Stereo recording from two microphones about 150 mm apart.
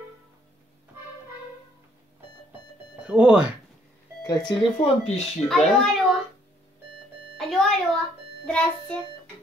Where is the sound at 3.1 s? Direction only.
5° right (ahead or behind).